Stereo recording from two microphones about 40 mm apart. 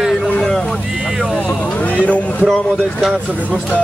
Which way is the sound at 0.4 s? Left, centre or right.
Centre.